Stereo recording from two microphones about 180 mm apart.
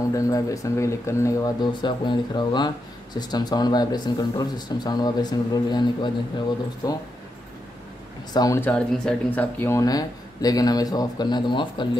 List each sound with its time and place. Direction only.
0.1 s speech: 20° left (ahead or behind)
8.3 s speech: 20° left (ahead or behind)